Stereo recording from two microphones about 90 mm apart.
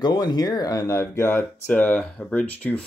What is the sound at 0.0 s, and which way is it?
Speech, 50° left (ahead or behind).